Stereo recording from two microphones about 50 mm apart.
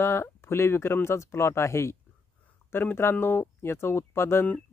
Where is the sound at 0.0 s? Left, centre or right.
Left.